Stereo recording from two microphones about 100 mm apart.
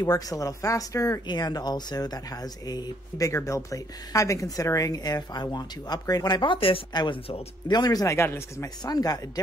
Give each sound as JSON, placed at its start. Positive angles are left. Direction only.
{"t": 0.0, "sound": "speech", "side_deg": 40}
{"t": 1.2, "sound": "speech", "side_deg": 45}
{"t": 6.9, "sound": "speech", "side_deg": 45}
{"t": 8.8, "sound": "speech", "side_deg": 40}